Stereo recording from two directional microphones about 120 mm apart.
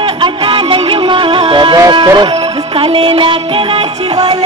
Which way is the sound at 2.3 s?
55° right (ahead or behind).